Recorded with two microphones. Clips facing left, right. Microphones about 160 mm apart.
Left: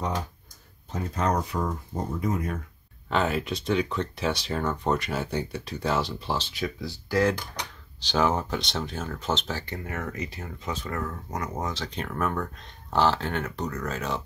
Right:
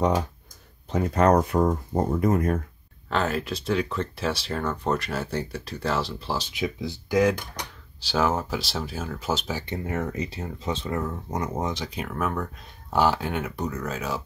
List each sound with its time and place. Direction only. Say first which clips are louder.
0.8 s speech: right 7 dB; 70° right (ahead or behind); by 2.6 s 50° right (ahead or behind)
3.1 s speech: even; centre (ahead or behind)
6.6 s speech: right 3 dB; 20° right (ahead or behind)
9.8 s speech: right 6 dB; 25° right (ahead or behind); by 14.2 s 5° right (ahead or behind)